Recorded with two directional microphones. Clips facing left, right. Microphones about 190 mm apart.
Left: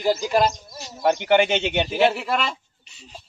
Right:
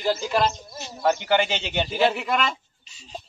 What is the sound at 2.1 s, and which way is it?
Speech, centre (ahead or behind).